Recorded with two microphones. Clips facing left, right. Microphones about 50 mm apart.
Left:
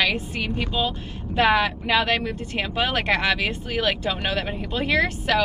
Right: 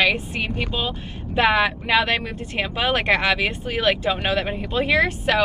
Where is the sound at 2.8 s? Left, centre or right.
Right.